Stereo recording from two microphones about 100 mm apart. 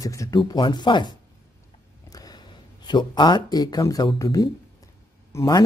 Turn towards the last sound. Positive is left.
turn(degrees=25)  # may be behind; listen again after turning